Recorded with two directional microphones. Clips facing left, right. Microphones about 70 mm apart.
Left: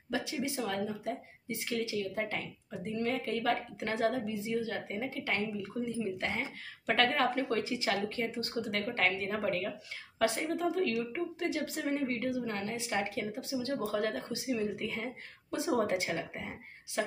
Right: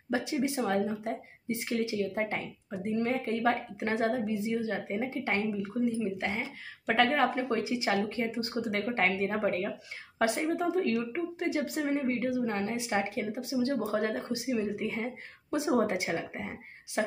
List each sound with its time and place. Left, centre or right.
0.1 s a woman's voice: right
5.9 s speech: centre
7.2 s a woman's voice: right